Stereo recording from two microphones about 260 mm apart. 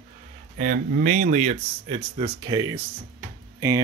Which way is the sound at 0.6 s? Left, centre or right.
Right.